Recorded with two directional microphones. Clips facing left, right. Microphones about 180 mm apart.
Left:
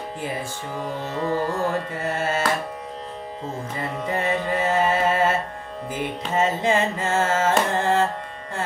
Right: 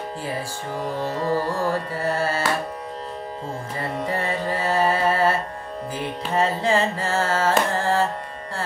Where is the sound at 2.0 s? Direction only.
20° left (ahead or behind).